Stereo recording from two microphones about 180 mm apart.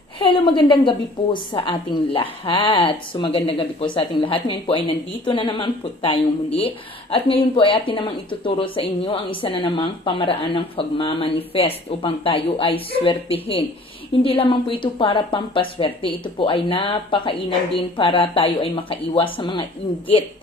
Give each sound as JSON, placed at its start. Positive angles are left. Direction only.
{"t": 0.2, "sound": "a woman's voice", "side_deg": 30}